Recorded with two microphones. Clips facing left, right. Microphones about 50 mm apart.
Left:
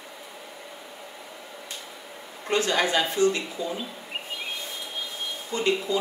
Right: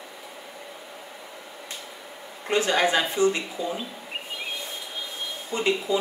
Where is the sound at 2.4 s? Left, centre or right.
Centre.